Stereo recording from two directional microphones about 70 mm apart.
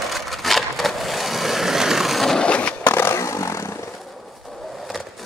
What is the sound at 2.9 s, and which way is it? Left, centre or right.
Vehicle, left.